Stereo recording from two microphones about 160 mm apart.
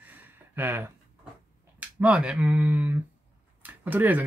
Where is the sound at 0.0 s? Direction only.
10° right (ahead or behind).